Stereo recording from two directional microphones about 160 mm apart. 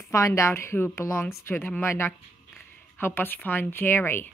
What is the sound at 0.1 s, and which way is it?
Speech, 20° left (ahead or behind).